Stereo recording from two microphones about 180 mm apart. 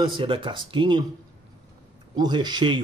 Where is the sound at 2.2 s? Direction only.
25° right (ahead or behind).